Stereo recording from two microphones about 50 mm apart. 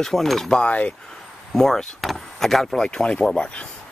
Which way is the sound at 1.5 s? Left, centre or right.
Centre.